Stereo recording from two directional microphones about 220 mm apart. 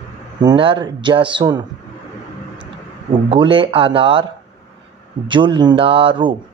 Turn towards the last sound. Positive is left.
turn(degrees=-20)  # may be behind; listen again after turning